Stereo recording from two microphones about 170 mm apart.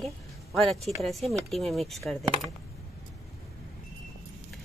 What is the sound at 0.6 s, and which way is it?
Speech, centre (ahead or behind).